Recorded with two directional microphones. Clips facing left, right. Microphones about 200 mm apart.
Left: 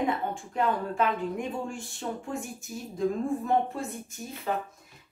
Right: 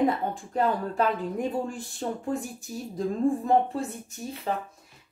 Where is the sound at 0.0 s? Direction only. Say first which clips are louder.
Right 4 dB; 35° right (ahead or behind).